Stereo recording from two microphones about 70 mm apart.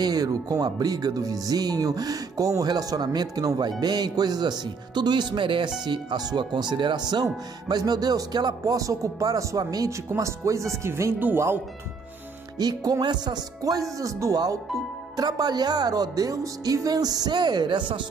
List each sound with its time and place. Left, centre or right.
0.0 s speech: right
7.6 s speech: right
9.8 s speech: right
12.5 s speech: right
13.0 s music: right
13.9 s speech: right